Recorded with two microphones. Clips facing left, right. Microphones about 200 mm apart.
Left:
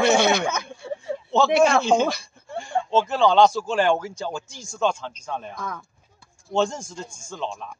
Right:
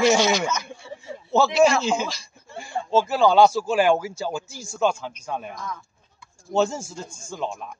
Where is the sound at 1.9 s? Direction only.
45° left (ahead or behind).